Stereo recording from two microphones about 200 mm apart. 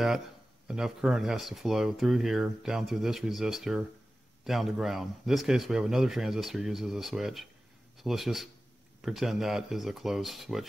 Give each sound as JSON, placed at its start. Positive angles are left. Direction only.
{"t": 0.7, "sound": "speech", "side_deg": 0}